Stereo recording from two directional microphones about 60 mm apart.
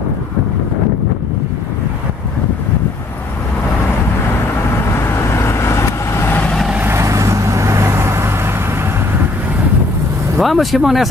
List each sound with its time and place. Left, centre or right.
5.3 s vehicle: left
6.2 s vehicle: left
6.9 s vehicle: right
10.3 s speech: centre